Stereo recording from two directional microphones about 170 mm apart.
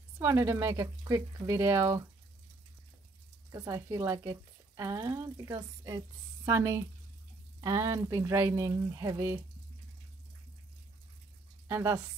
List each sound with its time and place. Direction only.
0.2 s speech: 15° right (ahead or behind)
3.5 s speech: 15° right (ahead or behind)
11.6 s speech: 15° right (ahead or behind)